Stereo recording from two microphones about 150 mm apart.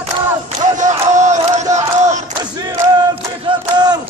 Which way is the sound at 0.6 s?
55° right (ahead or behind).